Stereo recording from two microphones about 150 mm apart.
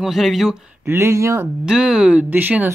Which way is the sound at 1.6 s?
5° right (ahead or behind).